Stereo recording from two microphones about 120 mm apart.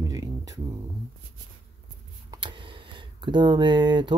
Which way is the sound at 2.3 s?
40° right (ahead or behind).